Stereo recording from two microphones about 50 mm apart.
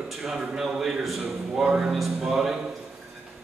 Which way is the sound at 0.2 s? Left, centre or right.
Centre.